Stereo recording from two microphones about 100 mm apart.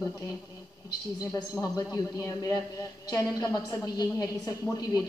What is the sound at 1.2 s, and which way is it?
A man's voice, 35° left (ahead or behind).